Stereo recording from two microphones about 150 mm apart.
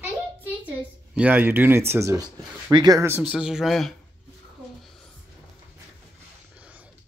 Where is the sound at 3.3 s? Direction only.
5° right (ahead or behind).